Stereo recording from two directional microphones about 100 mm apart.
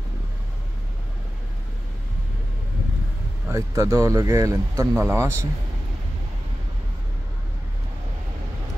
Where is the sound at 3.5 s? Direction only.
30° right (ahead or behind).